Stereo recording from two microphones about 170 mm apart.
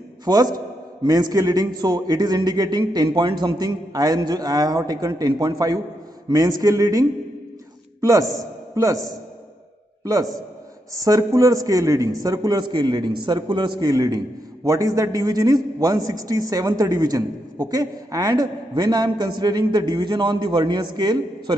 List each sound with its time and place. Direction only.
0.2 s a man's voice: 25° right (ahead or behind)